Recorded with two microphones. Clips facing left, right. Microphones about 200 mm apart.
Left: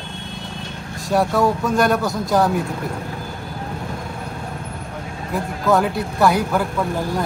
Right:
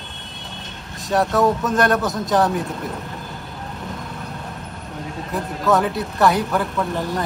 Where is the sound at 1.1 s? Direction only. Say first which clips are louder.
Even; centre (ahead or behind).